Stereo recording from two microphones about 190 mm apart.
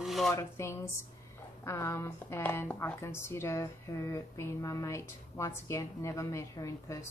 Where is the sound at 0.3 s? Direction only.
15° left (ahead or behind).